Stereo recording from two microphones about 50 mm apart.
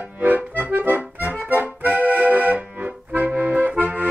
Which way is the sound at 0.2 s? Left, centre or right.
Right.